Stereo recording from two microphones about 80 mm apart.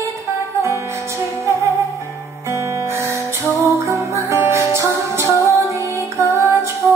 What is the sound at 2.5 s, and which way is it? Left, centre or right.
Music, right.